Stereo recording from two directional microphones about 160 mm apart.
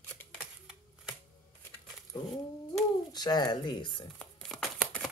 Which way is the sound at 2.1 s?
25° left (ahead or behind).